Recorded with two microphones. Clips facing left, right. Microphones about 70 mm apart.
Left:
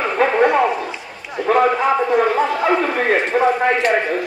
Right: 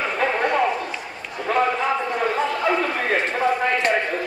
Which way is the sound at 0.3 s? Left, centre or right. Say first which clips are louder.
Left 6 dB; centre.